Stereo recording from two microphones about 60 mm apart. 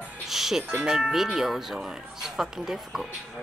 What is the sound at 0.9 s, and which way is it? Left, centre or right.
Speech, centre.